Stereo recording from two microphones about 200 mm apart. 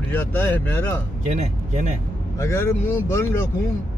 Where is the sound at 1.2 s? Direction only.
35° right (ahead or behind).